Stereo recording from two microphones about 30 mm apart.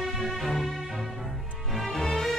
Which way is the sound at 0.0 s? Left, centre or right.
Centre.